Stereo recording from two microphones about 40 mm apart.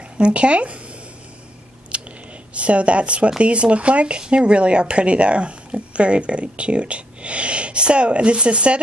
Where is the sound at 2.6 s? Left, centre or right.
Right.